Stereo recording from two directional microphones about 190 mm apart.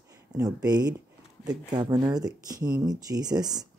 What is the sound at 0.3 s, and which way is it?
Speech, 20° right (ahead or behind).